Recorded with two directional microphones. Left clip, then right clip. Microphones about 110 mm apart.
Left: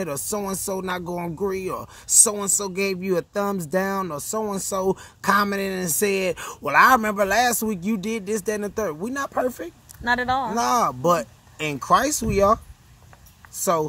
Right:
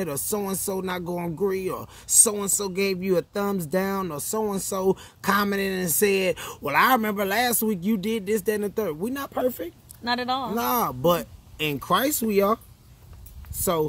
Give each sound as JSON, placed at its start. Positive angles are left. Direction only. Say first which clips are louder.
{"t": 0.0, "sound": "speech", "louder": "left 1 dB", "side_deg": -15}
{"t": 4.1, "sound": "speech", "louder": "left 1 dB", "side_deg": -20}
{"t": 4.6, "sound": "speech", "louder": "left 1 dB", "side_deg": -10}
{"t": 10.0, "sound": "speech", "louder": "left 4 dB", "side_deg": 20}
{"t": 10.5, "sound": "speech", "louder": "left 4 dB", "side_deg": -15}